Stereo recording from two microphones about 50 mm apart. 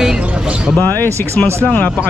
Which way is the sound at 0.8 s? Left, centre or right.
Left.